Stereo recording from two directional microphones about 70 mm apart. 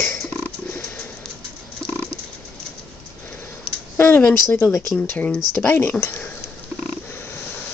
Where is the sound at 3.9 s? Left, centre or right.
Left.